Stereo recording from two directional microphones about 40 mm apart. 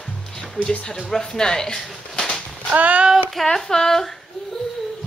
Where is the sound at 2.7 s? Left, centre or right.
Right.